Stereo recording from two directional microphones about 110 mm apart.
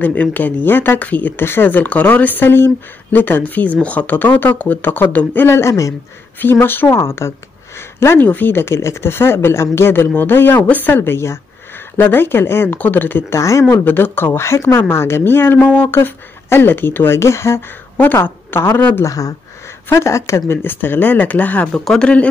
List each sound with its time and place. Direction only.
0.0 s speech: 15° left (ahead or behind)
19.0 s speech: 30° left (ahead or behind); by 22.3 s 10° left (ahead or behind)